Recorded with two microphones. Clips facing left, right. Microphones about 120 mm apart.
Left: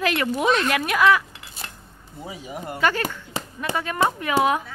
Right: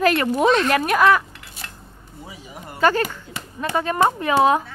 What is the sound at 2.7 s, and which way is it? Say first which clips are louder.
Speech: right 5 dB; 40° right (ahead or behind).